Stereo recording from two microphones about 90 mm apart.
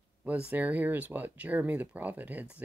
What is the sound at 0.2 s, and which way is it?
Speech, 20° right (ahead or behind).